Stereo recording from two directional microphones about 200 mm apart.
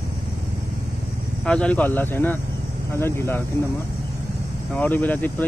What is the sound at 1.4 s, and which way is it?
Speech, 5° left (ahead or behind).